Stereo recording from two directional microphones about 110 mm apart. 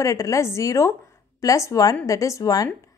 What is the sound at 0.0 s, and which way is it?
A woman's voice, 30° left (ahead or behind).